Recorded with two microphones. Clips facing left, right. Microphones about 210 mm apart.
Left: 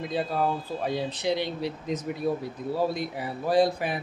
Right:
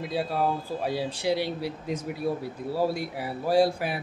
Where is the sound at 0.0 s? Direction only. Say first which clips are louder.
Even; 10° right (ahead or behind).